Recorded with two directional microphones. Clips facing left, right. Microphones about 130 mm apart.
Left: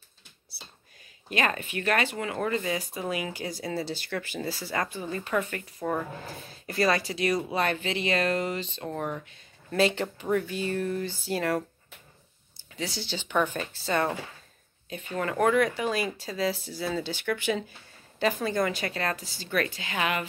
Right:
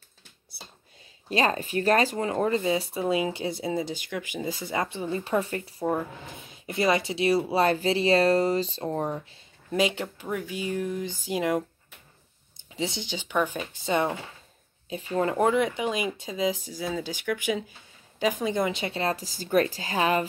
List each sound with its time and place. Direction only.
1.3 s speech: 30° right (ahead or behind)
5.9 s speech: 15° right (ahead or behind)
9.7 s speech: 10° right (ahead or behind)
12.7 s speech: 25° right (ahead or behind)